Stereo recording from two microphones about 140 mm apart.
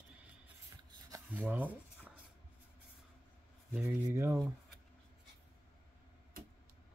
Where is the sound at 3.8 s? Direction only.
20° right (ahead or behind).